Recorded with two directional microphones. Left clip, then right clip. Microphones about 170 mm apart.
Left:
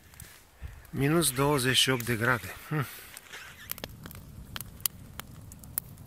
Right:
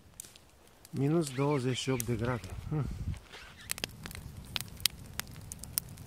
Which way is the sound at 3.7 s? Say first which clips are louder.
Right 7 dB; 15° right (ahead or behind).